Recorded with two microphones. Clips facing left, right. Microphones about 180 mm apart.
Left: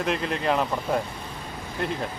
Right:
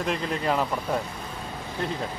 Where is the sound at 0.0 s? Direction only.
Centre (ahead or behind).